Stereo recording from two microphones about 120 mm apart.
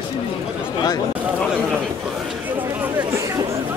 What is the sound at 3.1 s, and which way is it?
Chatter, 25° right (ahead or behind).